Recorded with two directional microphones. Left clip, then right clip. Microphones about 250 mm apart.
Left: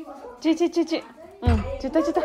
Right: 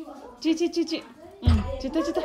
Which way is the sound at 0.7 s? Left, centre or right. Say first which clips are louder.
Left 3 dB; centre.